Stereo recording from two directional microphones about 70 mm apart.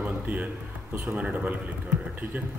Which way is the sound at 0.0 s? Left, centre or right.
Right.